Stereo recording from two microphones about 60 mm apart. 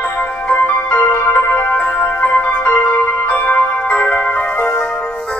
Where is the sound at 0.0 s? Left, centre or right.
Left.